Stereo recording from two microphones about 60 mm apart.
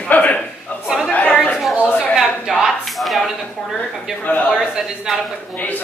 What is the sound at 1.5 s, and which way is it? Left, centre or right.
Chatter, centre.